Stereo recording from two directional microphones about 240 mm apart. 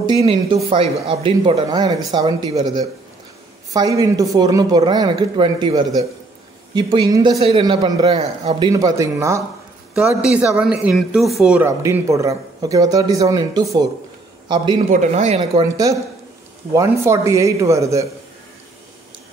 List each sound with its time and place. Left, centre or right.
0.0 s a man's voice: right
14.9 s a man's voice: right
15.6 s speech: centre